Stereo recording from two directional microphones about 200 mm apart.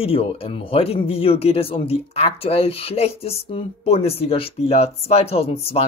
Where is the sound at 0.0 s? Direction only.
30° left (ahead or behind).